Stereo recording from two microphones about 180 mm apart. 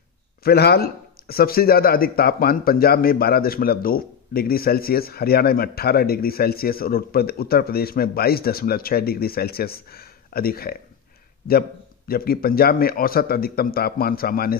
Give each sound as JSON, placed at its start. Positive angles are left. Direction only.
{"t": 0.4, "sound": "a man's voice", "side_deg": 60}
{"t": 12.1, "sound": "a man's voice", "side_deg": 55}